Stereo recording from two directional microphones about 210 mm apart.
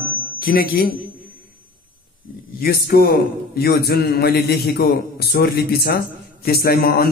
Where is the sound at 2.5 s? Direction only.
45° left (ahead or behind).